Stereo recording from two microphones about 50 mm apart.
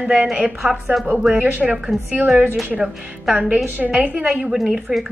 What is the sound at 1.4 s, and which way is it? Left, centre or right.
Speech, right.